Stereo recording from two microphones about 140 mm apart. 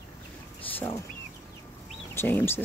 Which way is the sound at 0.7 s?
15° left (ahead or behind).